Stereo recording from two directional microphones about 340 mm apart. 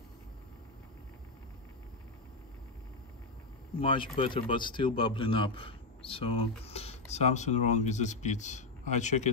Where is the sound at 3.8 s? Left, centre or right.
Centre.